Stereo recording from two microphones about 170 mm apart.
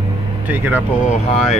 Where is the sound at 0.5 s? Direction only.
10° right (ahead or behind).